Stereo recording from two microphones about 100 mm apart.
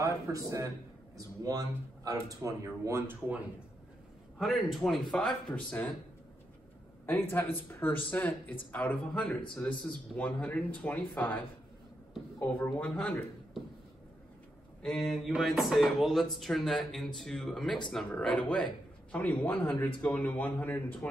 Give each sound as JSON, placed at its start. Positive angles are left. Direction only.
{"t": 0.0, "sound": "speech", "side_deg": -35}
{"t": 4.4, "sound": "speech", "side_deg": 0}
{"t": 5.5, "sound": "speech", "side_deg": 15}
{"t": 7.1, "sound": "speech", "side_deg": 20}
{"t": 14.8, "sound": "speech", "side_deg": 5}